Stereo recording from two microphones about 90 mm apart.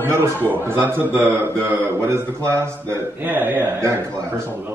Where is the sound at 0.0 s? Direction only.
25° right (ahead or behind).